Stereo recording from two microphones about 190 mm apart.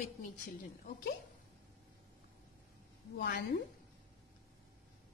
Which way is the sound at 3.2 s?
60° left (ahead or behind).